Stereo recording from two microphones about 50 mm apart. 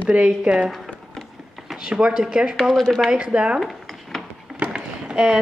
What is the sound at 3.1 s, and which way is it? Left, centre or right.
Speech, right.